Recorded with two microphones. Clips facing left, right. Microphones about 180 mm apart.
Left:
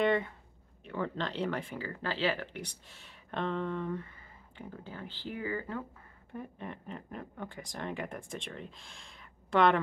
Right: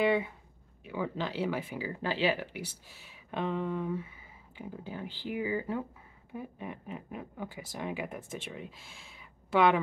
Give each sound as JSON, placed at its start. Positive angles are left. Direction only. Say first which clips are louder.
{"t": 0.0, "sound": "speech", "louder": "right 1 dB", "side_deg": -5}